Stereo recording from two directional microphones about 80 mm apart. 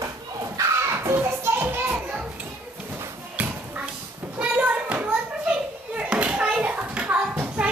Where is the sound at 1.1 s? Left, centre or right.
Right.